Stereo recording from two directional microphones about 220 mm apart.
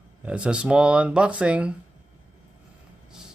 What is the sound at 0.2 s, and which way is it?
Speech, 5° right (ahead or behind).